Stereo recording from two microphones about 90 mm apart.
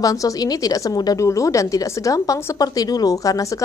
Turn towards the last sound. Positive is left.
turn(degrees=40)  # may be behind; listen again after turning